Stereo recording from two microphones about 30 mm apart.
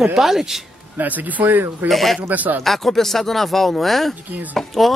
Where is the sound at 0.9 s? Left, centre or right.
Right.